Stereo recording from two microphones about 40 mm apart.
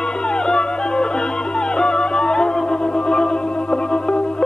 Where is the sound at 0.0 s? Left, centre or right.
Left.